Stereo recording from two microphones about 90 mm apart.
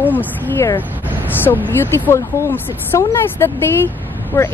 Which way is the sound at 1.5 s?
50° left (ahead or behind).